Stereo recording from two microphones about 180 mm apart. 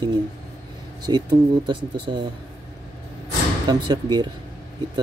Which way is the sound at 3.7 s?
25° right (ahead or behind).